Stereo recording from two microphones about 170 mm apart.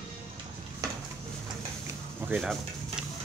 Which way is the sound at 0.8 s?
20° right (ahead or behind).